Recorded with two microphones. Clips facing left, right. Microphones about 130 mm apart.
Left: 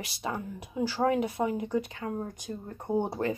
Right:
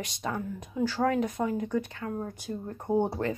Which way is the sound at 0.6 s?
10° left (ahead or behind).